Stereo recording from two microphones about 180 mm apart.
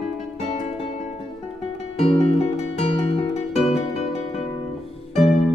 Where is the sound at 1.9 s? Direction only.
35° left (ahead or behind).